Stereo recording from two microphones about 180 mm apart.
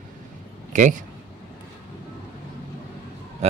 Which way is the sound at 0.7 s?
45° right (ahead or behind).